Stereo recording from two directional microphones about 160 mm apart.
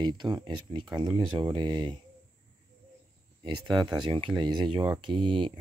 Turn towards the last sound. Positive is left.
turn(degrees=-30)  # may be behind; listen again after turning